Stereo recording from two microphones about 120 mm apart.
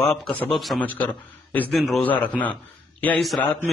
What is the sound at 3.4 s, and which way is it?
Speech, 20° left (ahead or behind).